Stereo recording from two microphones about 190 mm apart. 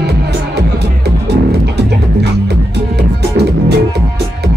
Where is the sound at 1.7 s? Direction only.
60° right (ahead or behind).